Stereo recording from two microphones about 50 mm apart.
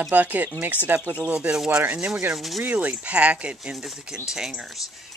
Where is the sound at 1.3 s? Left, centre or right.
Centre.